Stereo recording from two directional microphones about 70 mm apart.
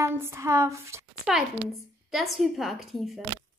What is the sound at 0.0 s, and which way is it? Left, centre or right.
Speech, right.